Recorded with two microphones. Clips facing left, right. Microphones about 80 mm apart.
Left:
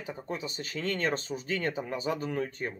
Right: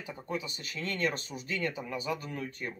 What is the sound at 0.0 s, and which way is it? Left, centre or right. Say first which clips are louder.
Speech: left 1 dB; left.